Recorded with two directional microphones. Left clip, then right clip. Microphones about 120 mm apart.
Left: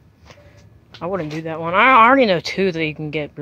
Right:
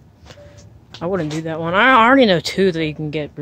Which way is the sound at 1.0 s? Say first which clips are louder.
Right 2 dB; 30° right (ahead or behind).